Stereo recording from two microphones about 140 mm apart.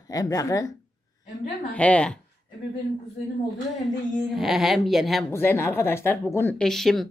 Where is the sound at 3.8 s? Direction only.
Centre (ahead or behind).